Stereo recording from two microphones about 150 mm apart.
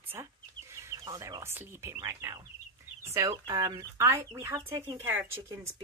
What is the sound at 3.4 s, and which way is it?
Speech, 30° right (ahead or behind).